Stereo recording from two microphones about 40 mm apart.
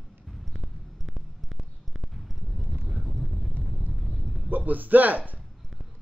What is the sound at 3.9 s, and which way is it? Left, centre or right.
Bow-wow, centre.